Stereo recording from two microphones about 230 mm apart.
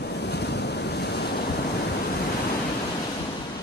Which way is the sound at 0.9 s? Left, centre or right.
Left.